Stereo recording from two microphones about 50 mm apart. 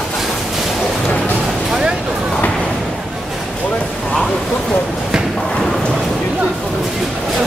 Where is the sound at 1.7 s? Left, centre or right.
Centre.